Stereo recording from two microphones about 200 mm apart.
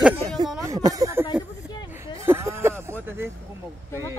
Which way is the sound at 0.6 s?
15° right (ahead or behind).